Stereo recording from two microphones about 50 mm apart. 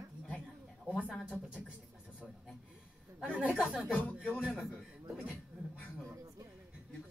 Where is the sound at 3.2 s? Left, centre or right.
Centre.